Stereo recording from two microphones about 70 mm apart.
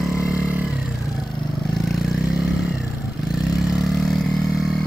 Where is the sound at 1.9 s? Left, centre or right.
Centre.